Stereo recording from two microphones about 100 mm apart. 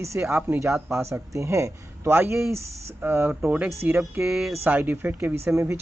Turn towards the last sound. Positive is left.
turn(degrees=-25)  # may be behind; listen again after turning